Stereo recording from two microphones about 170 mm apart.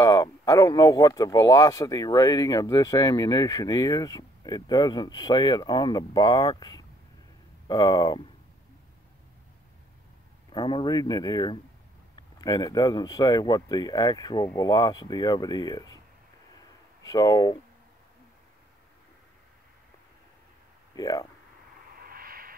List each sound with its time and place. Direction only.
0.0 s speech: 20° left (ahead or behind)
10.5 s speech: 25° left (ahead or behind)
17.0 s speech: 20° left (ahead or behind)
20.9 s speech: 20° left (ahead or behind)
22.0 s a sound: 60° right (ahead or behind)